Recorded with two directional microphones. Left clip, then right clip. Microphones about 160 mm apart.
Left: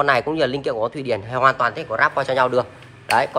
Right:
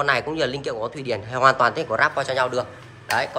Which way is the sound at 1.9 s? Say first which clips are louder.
Left 2 dB; centre (ahead or behind).